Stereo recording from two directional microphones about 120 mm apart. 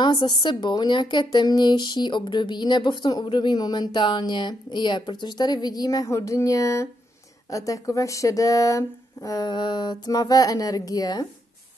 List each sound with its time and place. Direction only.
0.0 s a woman's voice: 40° left (ahead or behind)